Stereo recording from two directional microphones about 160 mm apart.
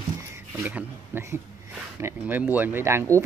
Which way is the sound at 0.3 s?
15° right (ahead or behind).